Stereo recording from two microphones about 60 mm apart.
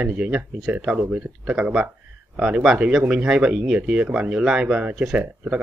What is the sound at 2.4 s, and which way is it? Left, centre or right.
Speech, centre.